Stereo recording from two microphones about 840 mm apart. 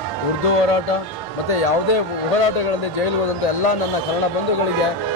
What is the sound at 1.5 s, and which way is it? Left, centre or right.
Speech, left.